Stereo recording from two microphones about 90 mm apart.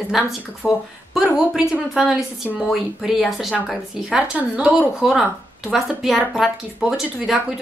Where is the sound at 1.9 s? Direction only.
5° right (ahead or behind).